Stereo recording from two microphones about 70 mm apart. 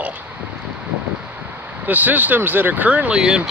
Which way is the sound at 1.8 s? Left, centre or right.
Right.